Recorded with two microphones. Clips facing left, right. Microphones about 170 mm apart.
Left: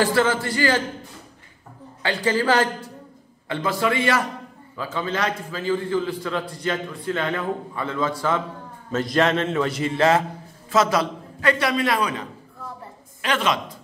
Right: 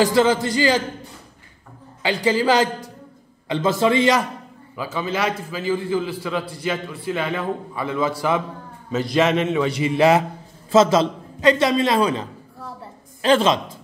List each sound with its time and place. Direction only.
0.0 s a man's voice: 15° right (ahead or behind)
2.0 s a man's voice: 15° right (ahead or behind)
4.7 s a man's voice: 10° right (ahead or behind)
8.9 s a man's voice: centre (ahead or behind)
10.7 s a man's voice: 25° right (ahead or behind)